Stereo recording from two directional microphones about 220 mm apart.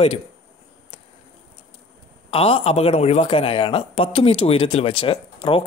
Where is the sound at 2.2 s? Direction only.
25° left (ahead or behind).